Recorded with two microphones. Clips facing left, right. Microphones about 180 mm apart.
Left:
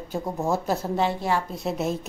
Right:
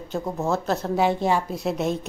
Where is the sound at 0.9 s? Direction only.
15° right (ahead or behind).